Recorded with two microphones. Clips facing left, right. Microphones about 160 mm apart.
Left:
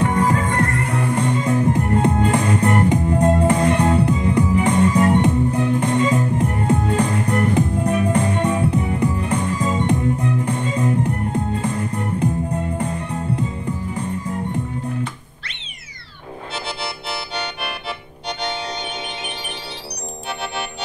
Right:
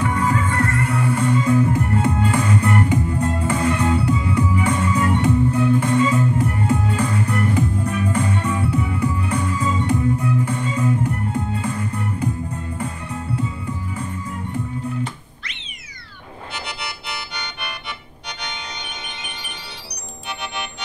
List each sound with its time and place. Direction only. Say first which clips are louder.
0.0 s music: left 2 dB; 35° left (ahead or behind)
16.5 s music: left 4 dB; 30° left (ahead or behind)